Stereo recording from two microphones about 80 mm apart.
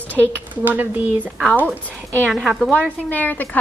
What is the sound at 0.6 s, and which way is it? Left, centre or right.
Speech, right.